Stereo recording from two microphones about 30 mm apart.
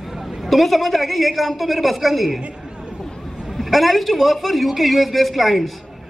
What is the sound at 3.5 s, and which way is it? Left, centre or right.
A man's voice, centre.